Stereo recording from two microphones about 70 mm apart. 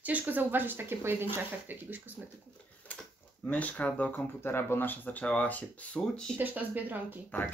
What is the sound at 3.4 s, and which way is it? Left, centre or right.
Speech, left.